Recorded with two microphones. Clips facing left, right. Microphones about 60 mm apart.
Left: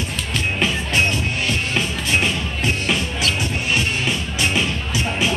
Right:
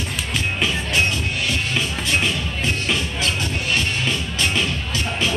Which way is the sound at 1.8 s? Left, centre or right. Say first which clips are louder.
Left 2 dB; centre.